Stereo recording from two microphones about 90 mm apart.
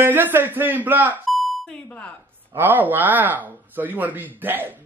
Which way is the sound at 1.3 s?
Centre (ahead or behind).